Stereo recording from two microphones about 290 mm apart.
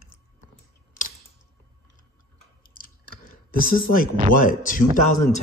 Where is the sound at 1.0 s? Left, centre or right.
Left.